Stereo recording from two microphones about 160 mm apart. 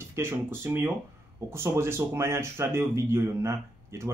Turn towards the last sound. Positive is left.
turn(degrees=-15)  # may be behind; listen again after turning